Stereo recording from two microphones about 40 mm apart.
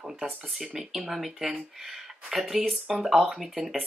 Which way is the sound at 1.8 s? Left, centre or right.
Centre.